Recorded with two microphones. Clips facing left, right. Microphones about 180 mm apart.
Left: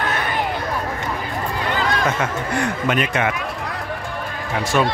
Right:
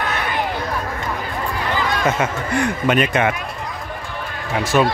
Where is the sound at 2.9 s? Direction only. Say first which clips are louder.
Right 4 dB; 20° right (ahead or behind).